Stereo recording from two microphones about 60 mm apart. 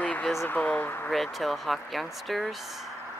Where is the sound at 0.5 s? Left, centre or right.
Left.